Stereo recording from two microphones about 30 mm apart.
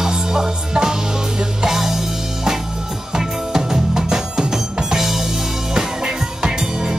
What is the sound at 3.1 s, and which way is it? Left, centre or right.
Music, right.